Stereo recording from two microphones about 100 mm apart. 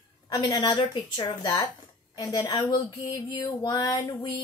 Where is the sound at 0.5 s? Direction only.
45° left (ahead or behind).